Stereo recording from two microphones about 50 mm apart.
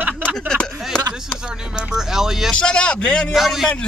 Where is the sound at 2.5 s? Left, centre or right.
Centre.